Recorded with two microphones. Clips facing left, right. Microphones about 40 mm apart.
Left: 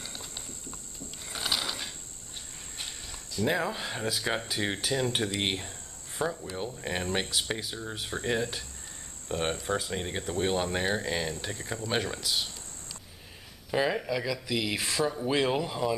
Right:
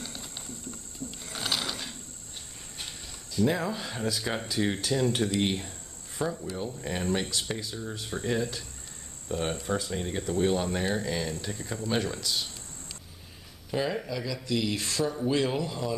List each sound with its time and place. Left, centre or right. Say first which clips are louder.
0.0 s a sound: right 1 dB; centre
3.4 s speech: even; centre
8.0 s speech: left 1 dB; centre
8.3 s speech: even; left
13.7 s speech: left 2 dB; centre
15.2 s speech: right 1 dB; centre